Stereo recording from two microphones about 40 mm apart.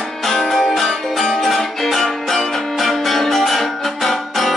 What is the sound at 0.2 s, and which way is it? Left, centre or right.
Music, centre.